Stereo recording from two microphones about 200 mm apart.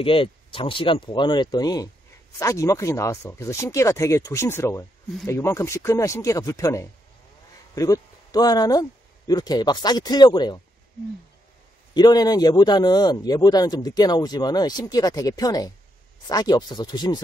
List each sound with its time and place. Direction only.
0.0 s speech: 25° left (ahead or behind)
11.9 s speech: 20° left (ahead or behind)